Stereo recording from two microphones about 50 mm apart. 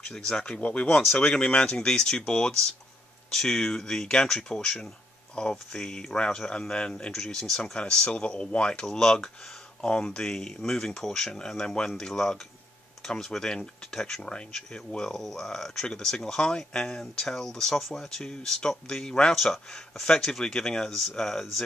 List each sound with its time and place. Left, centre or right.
0.1 s speech: centre
7.3 s speech: centre
7.8 s speech: centre
8.8 s speech: centre